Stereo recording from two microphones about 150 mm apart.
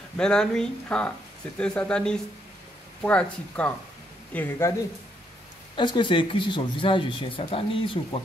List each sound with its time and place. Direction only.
0.2 s speech: 5° left (ahead or behind)
5.8 s speech: 35° left (ahead or behind)